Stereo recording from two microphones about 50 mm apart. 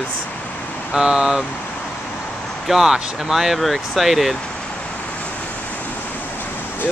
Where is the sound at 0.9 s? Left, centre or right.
Centre.